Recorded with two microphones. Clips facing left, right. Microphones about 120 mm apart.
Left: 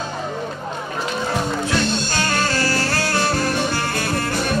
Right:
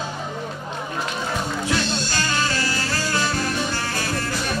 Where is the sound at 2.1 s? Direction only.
60° left (ahead or behind).